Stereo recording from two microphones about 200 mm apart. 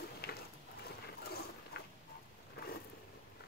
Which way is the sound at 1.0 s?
50° left (ahead or behind).